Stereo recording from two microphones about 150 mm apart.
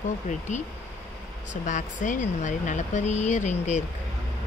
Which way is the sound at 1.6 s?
55° left (ahead or behind).